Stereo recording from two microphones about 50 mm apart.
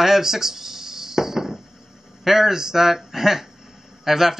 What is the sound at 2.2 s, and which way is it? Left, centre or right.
A man's voice, centre.